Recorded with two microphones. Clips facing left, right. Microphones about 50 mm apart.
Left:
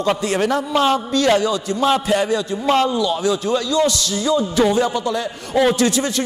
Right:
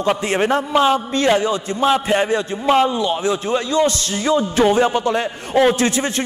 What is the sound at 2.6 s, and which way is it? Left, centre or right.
A man's voice, centre.